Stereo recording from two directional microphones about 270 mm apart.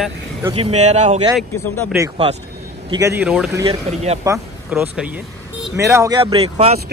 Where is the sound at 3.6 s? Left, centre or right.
Right.